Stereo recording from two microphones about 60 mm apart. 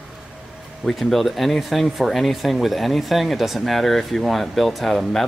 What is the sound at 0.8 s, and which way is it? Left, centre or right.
Speech, centre.